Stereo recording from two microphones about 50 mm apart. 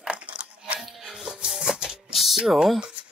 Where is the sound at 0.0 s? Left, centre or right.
Centre.